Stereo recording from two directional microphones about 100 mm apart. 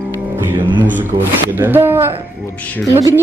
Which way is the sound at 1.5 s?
20° right (ahead or behind).